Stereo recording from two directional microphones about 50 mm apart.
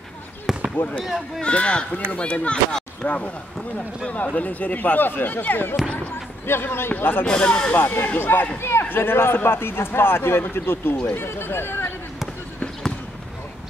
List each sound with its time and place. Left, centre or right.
0.5 s basketball bounce: centre
1.0 s speech: centre
1.4 s speech: left
4.4 s a man's voice: left
7.2 s speech: centre
7.7 s a man's voice: left
8.5 s a man's voice: left